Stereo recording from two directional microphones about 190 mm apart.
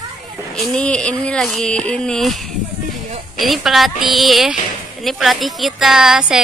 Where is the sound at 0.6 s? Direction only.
5° left (ahead or behind).